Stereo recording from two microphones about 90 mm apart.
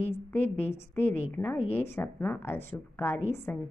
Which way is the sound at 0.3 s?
25° left (ahead or behind).